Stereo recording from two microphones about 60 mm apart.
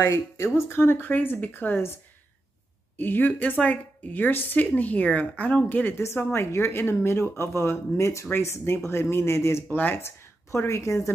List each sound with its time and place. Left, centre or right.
0.1 s speech: left
3.0 s speech: left
9.7 s speech: left
10.0 s a woman's voice: left